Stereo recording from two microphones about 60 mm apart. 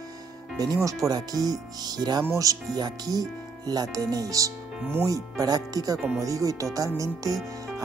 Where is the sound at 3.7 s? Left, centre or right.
Right.